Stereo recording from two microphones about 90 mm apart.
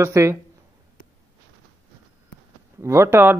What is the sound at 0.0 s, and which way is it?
Speech, 30° right (ahead or behind).